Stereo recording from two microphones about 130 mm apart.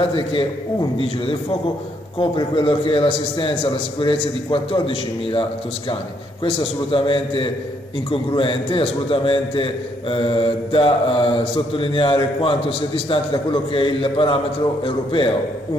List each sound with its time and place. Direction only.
0.0 s a man's voice: 45° left (ahead or behind)